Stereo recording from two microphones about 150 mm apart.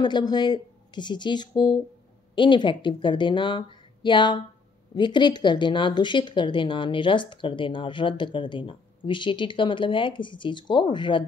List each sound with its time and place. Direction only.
0.0 s speech: 30° left (ahead or behind)